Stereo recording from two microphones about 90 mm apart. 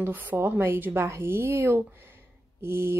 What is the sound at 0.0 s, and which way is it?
A woman's voice, 20° right (ahead or behind).